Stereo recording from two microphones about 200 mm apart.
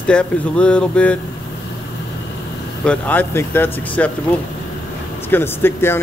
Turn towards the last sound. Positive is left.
turn(degrees=10)  # may be behind; listen again after turning